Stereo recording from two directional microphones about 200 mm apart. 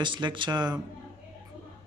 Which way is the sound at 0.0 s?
25° right (ahead or behind).